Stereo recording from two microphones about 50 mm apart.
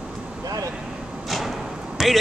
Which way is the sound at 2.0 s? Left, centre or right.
Centre.